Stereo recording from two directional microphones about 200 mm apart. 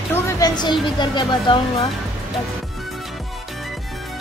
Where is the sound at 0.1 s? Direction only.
20° left (ahead or behind).